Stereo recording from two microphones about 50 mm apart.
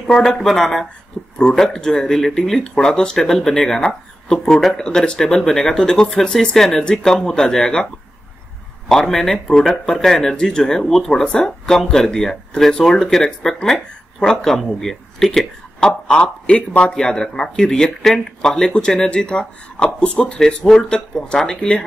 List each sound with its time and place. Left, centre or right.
0.0 s speech: centre
4.8 s speech: centre
16.1 s speech: left